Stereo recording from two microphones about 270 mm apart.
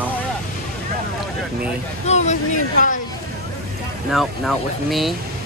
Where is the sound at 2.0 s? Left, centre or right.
Left.